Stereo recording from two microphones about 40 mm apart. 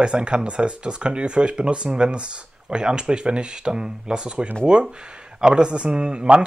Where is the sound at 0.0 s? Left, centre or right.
Right.